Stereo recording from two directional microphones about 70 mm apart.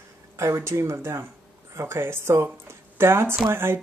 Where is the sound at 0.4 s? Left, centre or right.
Right.